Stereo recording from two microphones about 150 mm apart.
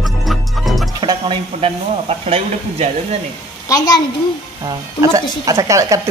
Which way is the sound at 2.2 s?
45° right (ahead or behind).